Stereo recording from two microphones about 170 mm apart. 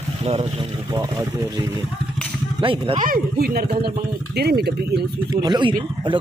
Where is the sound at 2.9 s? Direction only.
55° right (ahead or behind).